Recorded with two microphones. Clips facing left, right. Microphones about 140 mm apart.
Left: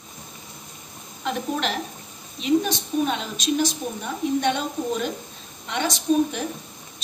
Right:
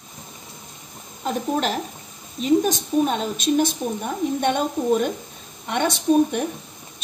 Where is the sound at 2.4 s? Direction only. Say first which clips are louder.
Right 3 dB; 45° right (ahead or behind).